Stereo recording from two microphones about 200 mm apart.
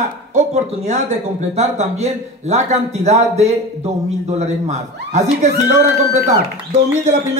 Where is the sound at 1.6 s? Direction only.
35° right (ahead or behind).